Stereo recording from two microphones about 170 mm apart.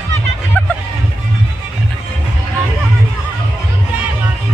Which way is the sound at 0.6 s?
10° left (ahead or behind).